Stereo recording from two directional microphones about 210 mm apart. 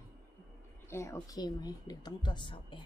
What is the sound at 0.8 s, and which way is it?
Speech, 10° left (ahead or behind).